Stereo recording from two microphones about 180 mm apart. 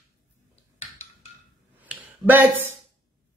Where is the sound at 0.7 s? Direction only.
35° left (ahead or behind).